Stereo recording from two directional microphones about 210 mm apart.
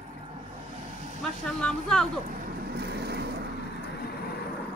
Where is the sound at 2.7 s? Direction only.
50° right (ahead or behind).